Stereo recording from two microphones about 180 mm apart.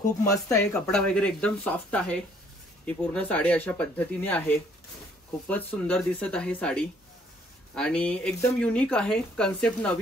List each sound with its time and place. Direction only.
0.2 s speech: 15° left (ahead or behind)
0.7 s speech: 5° left (ahead or behind)